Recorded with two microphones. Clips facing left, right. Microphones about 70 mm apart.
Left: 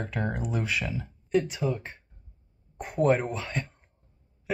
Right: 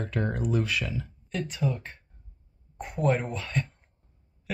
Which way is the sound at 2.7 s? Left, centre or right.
Left.